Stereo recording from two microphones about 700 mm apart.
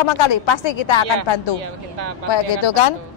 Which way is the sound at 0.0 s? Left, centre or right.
Left.